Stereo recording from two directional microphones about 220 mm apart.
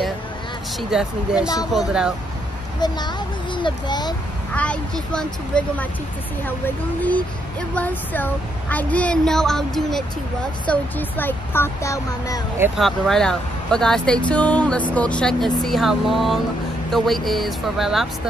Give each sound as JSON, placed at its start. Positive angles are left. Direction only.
{"t": 0.7, "sound": "speech", "side_deg": -5}
{"t": 2.8, "sound": "a child's voice", "side_deg": 20}
{"t": 4.6, "sound": "speech", "side_deg": 5}
{"t": 7.7, "sound": "speech", "side_deg": 5}
{"t": 12.5, "sound": "speech", "side_deg": -10}
{"t": 12.8, "sound": "speech", "side_deg": 0}